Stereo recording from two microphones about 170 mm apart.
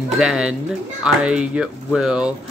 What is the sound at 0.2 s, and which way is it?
Speech, 5° right (ahead or behind).